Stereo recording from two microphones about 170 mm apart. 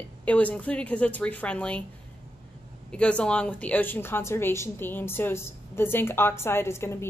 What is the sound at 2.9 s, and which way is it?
A woman's voice, 5° left (ahead or behind).